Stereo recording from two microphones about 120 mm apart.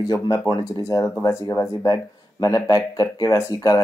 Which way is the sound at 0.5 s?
30° left (ahead or behind).